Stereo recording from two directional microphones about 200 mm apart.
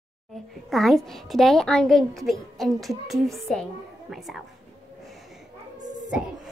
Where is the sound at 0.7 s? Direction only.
Centre (ahead or behind).